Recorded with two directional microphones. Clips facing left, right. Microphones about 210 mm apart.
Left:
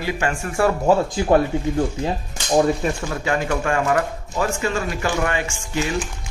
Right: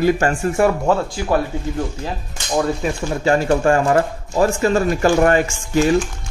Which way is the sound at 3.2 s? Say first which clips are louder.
Right 7 dB; 35° right (ahead or behind).